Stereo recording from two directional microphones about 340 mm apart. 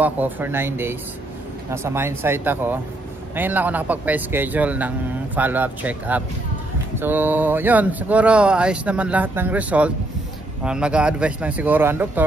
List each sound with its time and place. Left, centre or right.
0.0 s speech: centre